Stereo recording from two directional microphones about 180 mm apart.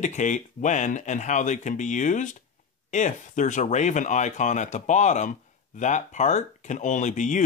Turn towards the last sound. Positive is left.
turn(degrees=45)  # may be behind; listen again after turning